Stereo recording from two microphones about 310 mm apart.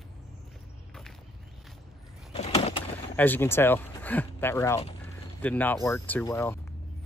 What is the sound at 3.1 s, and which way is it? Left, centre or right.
Speech, centre.